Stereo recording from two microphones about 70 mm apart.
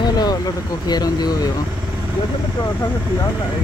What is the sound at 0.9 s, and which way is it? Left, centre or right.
Speech, left.